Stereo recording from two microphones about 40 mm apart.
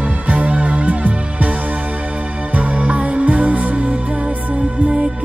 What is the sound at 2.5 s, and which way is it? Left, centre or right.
Music, right.